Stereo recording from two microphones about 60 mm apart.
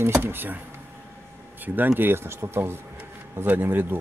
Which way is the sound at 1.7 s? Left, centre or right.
Right.